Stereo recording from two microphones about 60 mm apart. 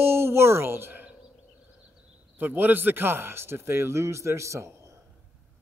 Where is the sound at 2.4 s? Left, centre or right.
Right.